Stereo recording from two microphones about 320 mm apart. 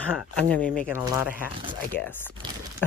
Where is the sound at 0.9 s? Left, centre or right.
Centre.